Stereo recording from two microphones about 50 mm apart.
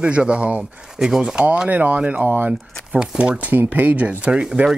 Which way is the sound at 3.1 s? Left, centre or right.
Centre.